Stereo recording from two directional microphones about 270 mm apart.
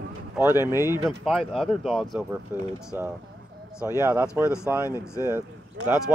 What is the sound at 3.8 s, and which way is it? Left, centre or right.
Speech, centre.